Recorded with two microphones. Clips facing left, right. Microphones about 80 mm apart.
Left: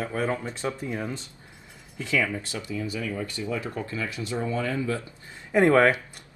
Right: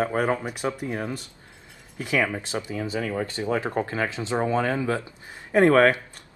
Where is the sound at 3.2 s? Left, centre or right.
Right.